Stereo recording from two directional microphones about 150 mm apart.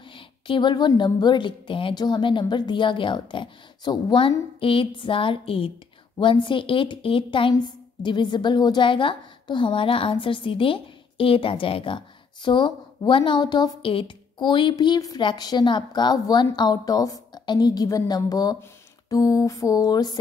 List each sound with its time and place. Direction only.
0.1 s a woman's voice: 35° left (ahead or behind)